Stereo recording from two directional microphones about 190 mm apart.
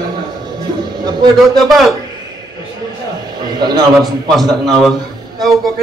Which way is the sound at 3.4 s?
20° right (ahead or behind).